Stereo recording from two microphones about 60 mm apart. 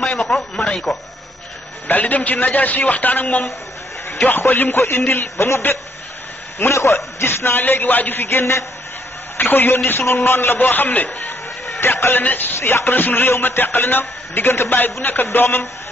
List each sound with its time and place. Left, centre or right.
0.1 s a man's voice: centre; by 7.6 s left
7.6 s a man's voice: left
11.8 s a man's voice: left
12.5 s a man's voice: left